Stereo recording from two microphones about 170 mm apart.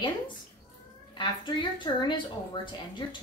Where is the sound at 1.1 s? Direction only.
25° left (ahead or behind).